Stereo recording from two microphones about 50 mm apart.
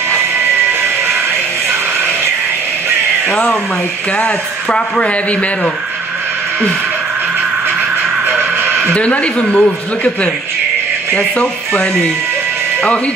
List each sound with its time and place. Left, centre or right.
3.3 s speech: centre
4.6 s speech: centre
8.3 s music: right
8.9 s speech: left
11.3 s speech: centre